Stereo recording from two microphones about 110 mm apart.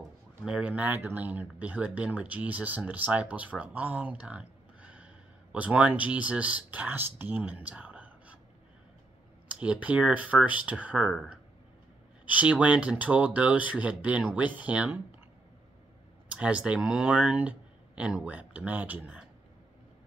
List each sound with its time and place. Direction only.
0.5 s speech: 10° right (ahead or behind)
9.5 s speech: 10° right (ahead or behind)
12.3 s speech: 15° right (ahead or behind)
16.3 s speech: 10° right (ahead or behind)